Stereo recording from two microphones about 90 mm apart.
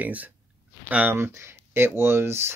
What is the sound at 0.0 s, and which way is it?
Speech, 15° right (ahead or behind).